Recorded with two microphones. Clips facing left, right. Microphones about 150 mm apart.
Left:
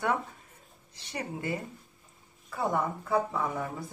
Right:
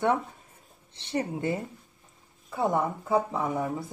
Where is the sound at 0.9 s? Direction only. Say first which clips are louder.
Right 7 dB; 25° right (ahead or behind).